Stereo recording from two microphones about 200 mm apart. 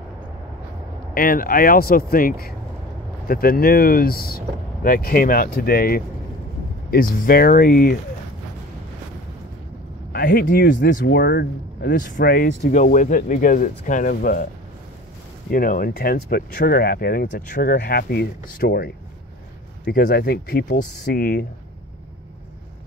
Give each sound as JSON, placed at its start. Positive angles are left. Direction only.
{"t": 1.1, "sound": "speech", "side_deg": 45}
{"t": 10.1, "sound": "speech", "side_deg": 50}
{"t": 11.9, "sound": "speech", "side_deg": 40}
{"t": 15.5, "sound": "speech", "side_deg": 45}